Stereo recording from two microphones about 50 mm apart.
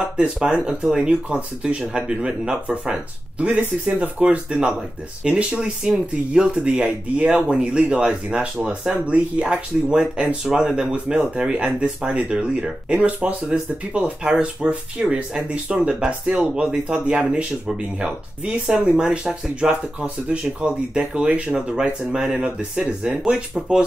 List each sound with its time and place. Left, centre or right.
0.2 s speech: centre
13.0 s speech: right